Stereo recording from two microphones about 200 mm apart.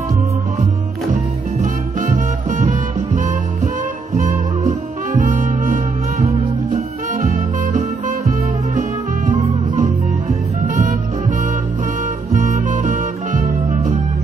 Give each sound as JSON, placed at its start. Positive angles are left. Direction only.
{"t": 1.1, "sound": "music", "side_deg": -40}
{"t": 5.2, "sound": "music", "side_deg": -40}
{"t": 9.3, "sound": "music", "side_deg": -40}
{"t": 12.4, "sound": "music", "side_deg": -40}